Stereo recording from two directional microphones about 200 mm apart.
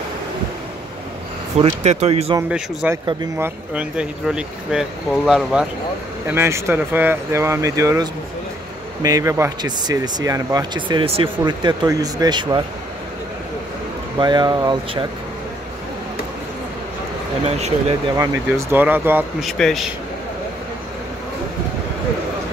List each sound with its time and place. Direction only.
1.6 s speech: 35° right (ahead or behind)
2.5 s speech: 5° right (ahead or behind)
3.1 s speech: 15° right (ahead or behind)
14.1 s speech: 20° right (ahead or behind)
17.6 s speech: 35° right (ahead or behind)
18.1 s speech: 15° right (ahead or behind)
19.4 s speech: centre (ahead or behind)